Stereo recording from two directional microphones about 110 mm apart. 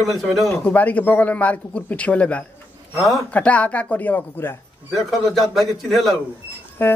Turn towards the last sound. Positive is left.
turn(degrees=20)  # may be behind; listen again after turning